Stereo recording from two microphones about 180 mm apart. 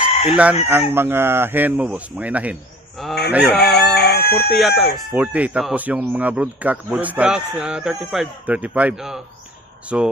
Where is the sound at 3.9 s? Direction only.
65° left (ahead or behind).